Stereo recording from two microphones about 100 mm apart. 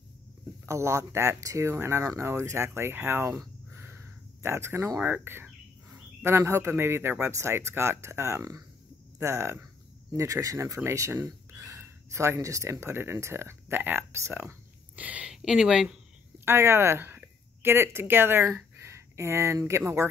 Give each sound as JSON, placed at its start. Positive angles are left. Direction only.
{"t": 0.7, "sound": "speech", "side_deg": -30}
{"t": 3.7, "sound": "a sound", "side_deg": -25}
{"t": 5.0, "sound": "speech", "side_deg": -20}
{"t": 15.0, "sound": "speech", "side_deg": -15}
{"t": 16.4, "sound": "speech", "side_deg": -25}
{"t": 18.8, "sound": "a sound", "side_deg": -30}